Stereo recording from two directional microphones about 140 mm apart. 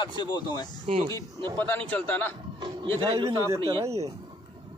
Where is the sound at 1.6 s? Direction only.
15° left (ahead or behind).